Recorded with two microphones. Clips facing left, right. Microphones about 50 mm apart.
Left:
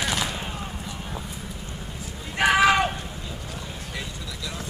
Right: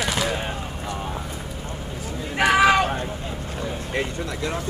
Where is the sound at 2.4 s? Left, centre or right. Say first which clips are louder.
Right 2 dB; centre.